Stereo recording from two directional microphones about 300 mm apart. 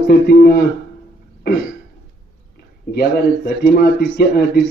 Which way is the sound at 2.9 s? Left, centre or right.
Left.